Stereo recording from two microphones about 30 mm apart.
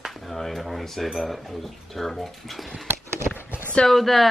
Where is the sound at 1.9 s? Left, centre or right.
Centre.